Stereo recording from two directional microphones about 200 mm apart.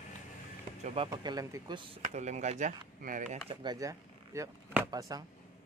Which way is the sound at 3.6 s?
15° right (ahead or behind).